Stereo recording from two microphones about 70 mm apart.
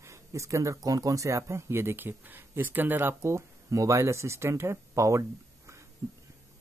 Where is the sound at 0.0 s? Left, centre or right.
Right.